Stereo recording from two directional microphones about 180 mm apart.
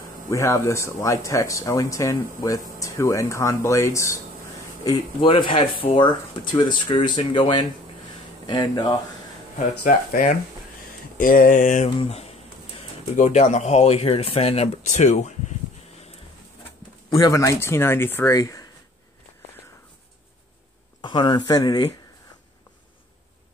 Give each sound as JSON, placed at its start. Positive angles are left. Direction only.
{"t": 0.3, "sound": "speech", "side_deg": 15}
{"t": 6.9, "sound": "speech", "side_deg": 25}
{"t": 9.8, "sound": "a sound", "side_deg": 50}
{"t": 12.0, "sound": "speech", "side_deg": 35}
{"t": 17.2, "sound": "speech", "side_deg": 15}
{"t": 21.0, "sound": "speech", "side_deg": 25}